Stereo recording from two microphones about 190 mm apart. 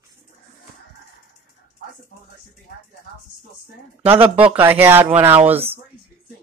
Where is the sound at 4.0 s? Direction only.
10° right (ahead or behind).